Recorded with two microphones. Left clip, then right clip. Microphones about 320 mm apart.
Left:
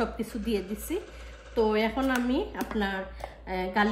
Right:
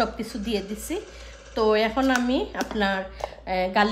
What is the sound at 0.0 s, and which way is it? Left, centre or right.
A woman's voice, right.